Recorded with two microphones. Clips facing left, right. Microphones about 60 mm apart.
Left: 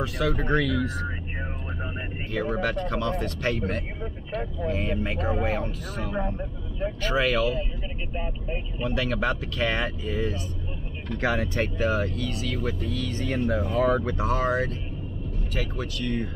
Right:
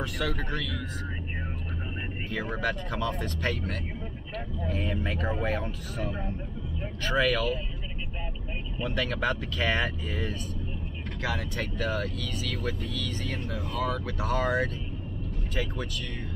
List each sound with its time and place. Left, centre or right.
0.2 s speech: centre
0.5 s speech: left
2.3 s speech: centre
4.3 s speech: centre
11.1 s speech: left
11.8 s speech: centre
13.4 s speech: left; by 16.1 s centre